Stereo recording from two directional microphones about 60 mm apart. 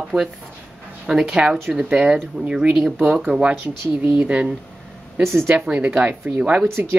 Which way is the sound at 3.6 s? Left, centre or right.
Right.